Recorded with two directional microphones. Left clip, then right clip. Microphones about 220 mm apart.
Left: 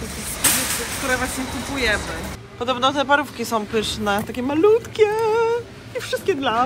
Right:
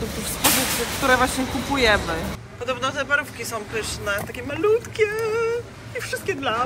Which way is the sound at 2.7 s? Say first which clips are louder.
Left 5 dB; 15° left (ahead or behind).